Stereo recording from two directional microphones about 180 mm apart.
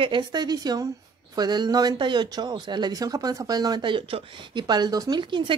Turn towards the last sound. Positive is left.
turn(degrees=-25)  # may be behind; listen again after turning